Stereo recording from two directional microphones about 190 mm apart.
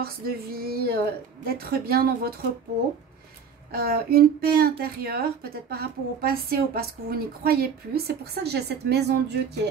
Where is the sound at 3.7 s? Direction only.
55° right (ahead or behind).